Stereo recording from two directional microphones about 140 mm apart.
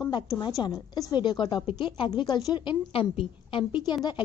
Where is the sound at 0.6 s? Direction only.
30° left (ahead or behind).